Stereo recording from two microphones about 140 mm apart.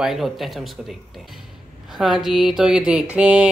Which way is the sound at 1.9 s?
Centre (ahead or behind).